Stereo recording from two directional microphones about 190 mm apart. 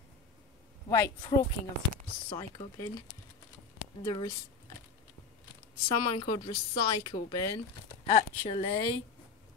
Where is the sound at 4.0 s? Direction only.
20° left (ahead or behind).